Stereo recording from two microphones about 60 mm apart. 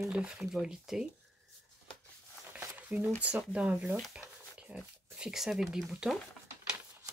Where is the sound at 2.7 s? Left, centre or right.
Right.